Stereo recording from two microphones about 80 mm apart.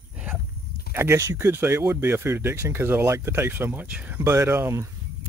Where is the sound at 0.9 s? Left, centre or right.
Right; by 4.2 s centre.